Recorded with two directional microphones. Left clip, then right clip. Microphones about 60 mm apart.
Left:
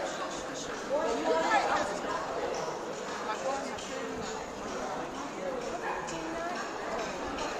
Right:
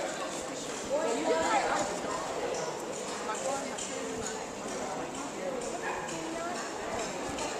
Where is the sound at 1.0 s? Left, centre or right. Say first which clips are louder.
Even; left.